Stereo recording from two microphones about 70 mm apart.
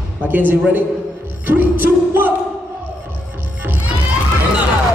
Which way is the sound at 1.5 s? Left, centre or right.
Right.